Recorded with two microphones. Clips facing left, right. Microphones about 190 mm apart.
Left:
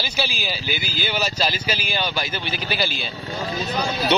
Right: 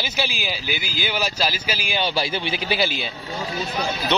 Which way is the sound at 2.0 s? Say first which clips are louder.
Right 7 dB; 30° right (ahead or behind).